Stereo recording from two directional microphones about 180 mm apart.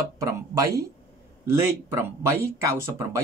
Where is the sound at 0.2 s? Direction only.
20° right (ahead or behind).